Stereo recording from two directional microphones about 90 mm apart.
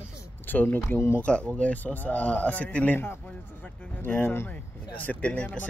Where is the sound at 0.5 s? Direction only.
20° left (ahead or behind).